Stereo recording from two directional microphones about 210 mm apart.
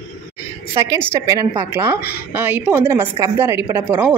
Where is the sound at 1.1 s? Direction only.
15° right (ahead or behind).